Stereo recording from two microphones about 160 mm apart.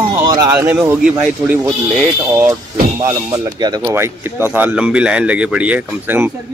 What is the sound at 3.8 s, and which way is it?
A man's voice, 15° right (ahead or behind).